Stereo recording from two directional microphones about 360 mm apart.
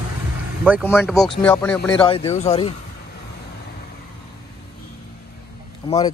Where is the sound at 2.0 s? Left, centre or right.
Centre.